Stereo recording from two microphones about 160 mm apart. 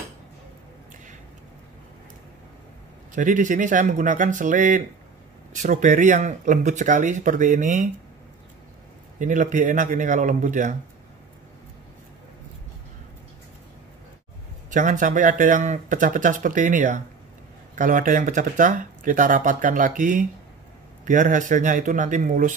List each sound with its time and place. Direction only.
3.2 s speech: 55° right (ahead or behind)
9.2 s speech: 50° right (ahead or behind)
14.7 s speech: 55° right (ahead or behind)